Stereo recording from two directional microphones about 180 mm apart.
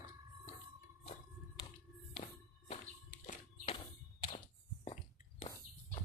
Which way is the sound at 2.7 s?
40° left (ahead or behind).